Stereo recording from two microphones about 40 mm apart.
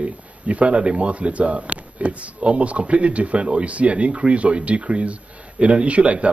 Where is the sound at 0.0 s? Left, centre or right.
Right.